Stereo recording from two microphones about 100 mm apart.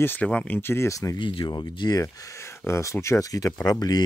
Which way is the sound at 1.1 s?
55° left (ahead or behind).